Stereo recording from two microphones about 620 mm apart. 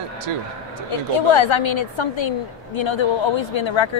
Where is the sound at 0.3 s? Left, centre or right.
Right.